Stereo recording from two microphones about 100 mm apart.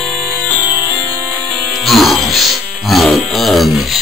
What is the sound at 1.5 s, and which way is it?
Music, centre (ahead or behind).